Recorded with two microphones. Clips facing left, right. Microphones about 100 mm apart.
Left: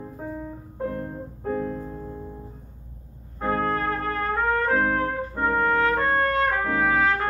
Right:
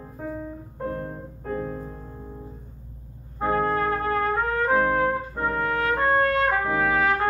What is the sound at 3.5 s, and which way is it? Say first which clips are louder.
Trumpet: right 2 dB; 15° right (ahead or behind).